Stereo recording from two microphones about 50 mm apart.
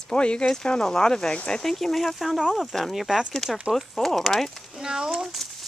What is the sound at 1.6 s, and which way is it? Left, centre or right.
Speech, centre.